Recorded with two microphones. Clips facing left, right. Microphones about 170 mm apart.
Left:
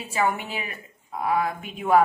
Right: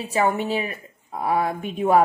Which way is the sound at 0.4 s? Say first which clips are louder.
Right 9 dB; 35° right (ahead or behind).